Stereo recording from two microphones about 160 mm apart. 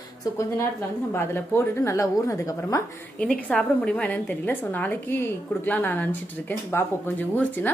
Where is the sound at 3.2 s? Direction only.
5° left (ahead or behind).